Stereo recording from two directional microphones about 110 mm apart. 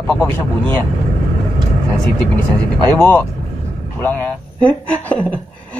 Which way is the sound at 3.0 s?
20° left (ahead or behind).